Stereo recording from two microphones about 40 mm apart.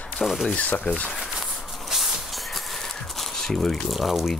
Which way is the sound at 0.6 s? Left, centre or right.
Left.